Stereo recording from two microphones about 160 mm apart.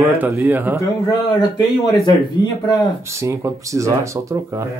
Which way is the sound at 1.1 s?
20° left (ahead or behind).